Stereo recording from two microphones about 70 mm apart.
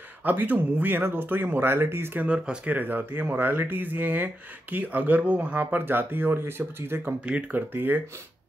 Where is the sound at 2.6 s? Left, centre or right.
Right.